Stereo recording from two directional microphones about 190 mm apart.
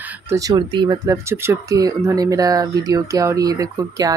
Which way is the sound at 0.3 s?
20° right (ahead or behind).